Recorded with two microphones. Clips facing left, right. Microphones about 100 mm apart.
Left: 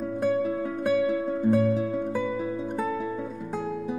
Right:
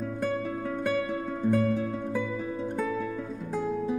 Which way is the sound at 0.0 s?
10° left (ahead or behind).